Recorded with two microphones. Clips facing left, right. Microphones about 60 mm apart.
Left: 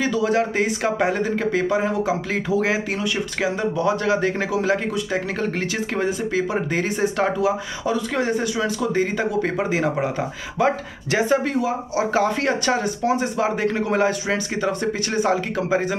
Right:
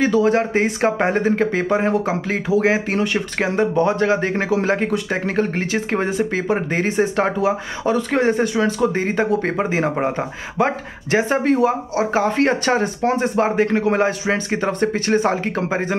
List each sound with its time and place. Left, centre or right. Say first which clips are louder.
0.0 s speech: right 4 dB; right
2.3 s speech: right 6 dB; right